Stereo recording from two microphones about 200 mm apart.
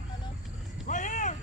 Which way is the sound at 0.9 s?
40° left (ahead or behind).